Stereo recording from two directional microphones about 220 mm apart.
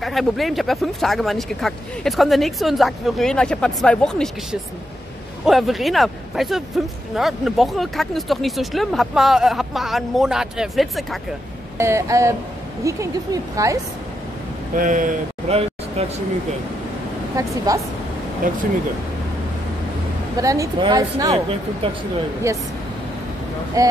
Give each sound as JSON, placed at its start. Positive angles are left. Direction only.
{"t": 0.0, "sound": "speech", "side_deg": 0}
{"t": 11.8, "sound": "speech", "side_deg": -15}
{"t": 14.8, "sound": "speech", "side_deg": -35}
{"t": 17.7, "sound": "speech", "side_deg": -15}
{"t": 20.3, "sound": "speech", "side_deg": -15}
{"t": 23.8, "sound": "speech", "side_deg": -15}